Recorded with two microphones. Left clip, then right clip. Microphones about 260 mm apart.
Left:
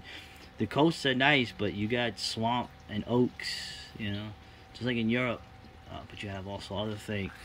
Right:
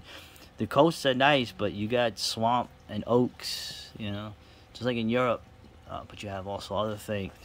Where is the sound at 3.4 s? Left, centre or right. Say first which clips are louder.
Right 1 dB; right.